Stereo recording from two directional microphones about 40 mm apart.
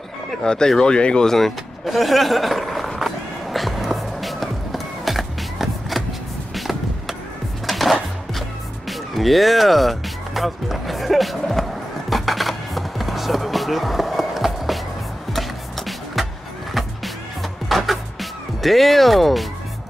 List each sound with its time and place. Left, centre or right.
0.4 s speech: centre
1.2 s speech: centre
3.0 s music: centre
6.5 s a sound: centre
7.6 s music: centre